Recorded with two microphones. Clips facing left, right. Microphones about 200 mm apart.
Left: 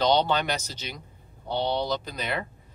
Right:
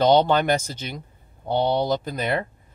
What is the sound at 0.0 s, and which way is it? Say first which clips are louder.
Speech: right 6 dB; 50° right (ahead or behind).